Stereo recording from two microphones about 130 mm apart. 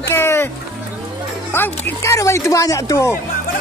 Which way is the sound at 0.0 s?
20° left (ahead or behind).